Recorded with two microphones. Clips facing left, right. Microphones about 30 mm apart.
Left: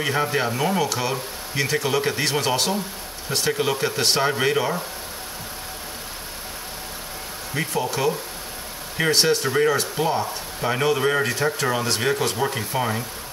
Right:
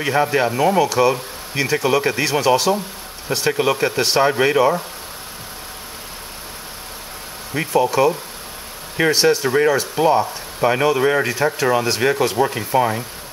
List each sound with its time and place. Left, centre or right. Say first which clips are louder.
0.0 s speech: right 5 dB; centre
2.4 s speech: right 7 dB; centre
3.3 s speech: right 4 dB; centre
7.5 s speech: right 7 dB; centre
9.0 s speech: right 4 dB; right
9.4 s speech: right 4 dB; centre